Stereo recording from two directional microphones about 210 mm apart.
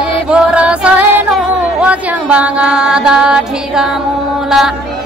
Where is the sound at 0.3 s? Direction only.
5° right (ahead or behind).